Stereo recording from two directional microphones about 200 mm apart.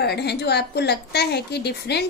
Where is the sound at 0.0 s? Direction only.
55° left (ahead or behind).